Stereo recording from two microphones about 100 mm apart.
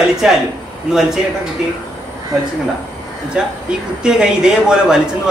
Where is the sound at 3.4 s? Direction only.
10° right (ahead or behind).